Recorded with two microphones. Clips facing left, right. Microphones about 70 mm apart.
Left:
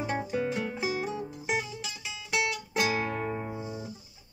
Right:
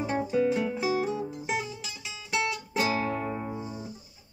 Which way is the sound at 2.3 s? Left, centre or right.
Centre.